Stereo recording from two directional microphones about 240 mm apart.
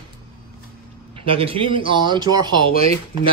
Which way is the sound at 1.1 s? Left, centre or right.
Right.